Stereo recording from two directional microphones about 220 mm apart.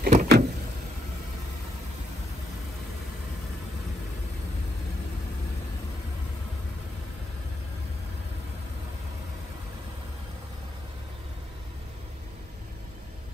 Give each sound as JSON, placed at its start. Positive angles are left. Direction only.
{"t": 0.0, "sound": "vehicle", "side_deg": -40}